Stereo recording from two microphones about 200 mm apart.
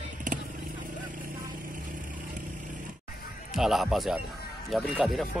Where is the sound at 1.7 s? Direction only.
40° right (ahead or behind).